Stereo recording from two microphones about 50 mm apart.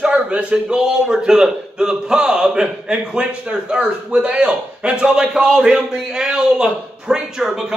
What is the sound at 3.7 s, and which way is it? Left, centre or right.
A man's voice, centre.